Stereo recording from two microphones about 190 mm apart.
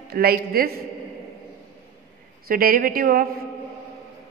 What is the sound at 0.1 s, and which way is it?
Speech, 55° right (ahead or behind).